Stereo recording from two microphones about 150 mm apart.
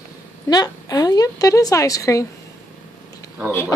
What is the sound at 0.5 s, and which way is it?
A woman's voice, 25° left (ahead or behind).